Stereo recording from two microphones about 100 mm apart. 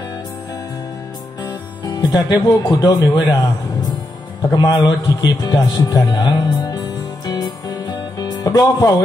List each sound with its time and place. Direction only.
1.9 s a man's voice: 45° left (ahead or behind)
4.5 s a man's voice: 45° left (ahead or behind)
7.2 s music: 40° left (ahead or behind)